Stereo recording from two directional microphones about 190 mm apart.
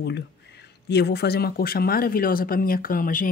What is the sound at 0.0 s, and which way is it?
Speech, 65° left (ahead or behind).